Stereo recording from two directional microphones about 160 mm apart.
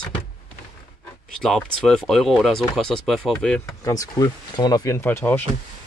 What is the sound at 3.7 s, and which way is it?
Speech, 20° left (ahead or behind).